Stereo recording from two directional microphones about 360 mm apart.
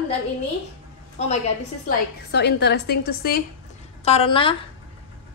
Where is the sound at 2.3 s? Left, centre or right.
Left.